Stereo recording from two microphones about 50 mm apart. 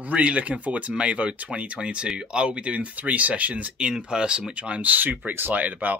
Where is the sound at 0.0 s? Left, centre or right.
Right.